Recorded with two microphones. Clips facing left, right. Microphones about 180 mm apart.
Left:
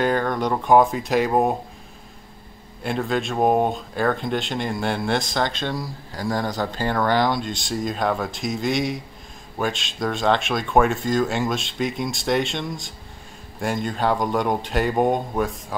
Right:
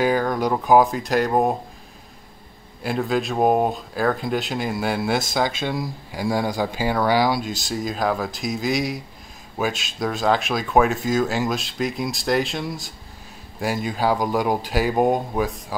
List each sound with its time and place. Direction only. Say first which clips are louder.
0.0 s speech: right 1 dB; 5° right (ahead or behind)
2.8 s speech: right 1 dB; centre (ahead or behind)